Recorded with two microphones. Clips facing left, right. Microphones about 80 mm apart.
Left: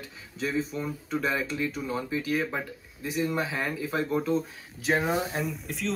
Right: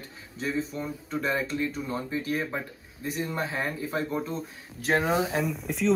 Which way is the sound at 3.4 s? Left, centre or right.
Right.